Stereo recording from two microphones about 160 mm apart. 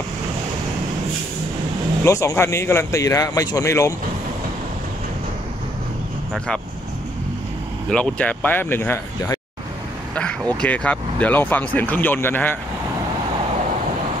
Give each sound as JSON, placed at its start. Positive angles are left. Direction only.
{"t": 2.0, "sound": "a man's voice", "side_deg": 20}
{"t": 6.3, "sound": "speech", "side_deg": 5}
{"t": 7.9, "sound": "speech", "side_deg": 5}